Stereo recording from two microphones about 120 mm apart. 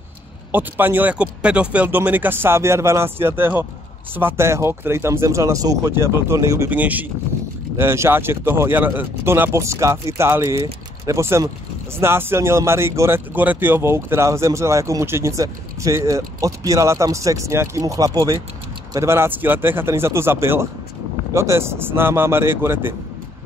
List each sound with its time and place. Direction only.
0.5 s speech: 15° right (ahead or behind)
6.7 s speech: 15° right (ahead or behind)